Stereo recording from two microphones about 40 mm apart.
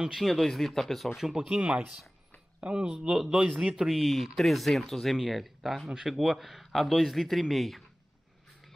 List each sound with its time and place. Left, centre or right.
0.2 s speech: centre
1.1 s a man's voice: centre; by 3.2 s right
3.2 s a man's voice: centre
3.9 s speech: centre